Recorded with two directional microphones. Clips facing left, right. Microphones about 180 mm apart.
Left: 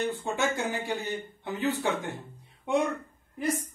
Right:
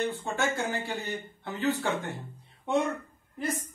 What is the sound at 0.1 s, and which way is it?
Speech, 15° left (ahead or behind).